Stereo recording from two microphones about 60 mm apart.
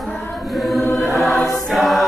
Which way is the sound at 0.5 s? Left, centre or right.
Centre.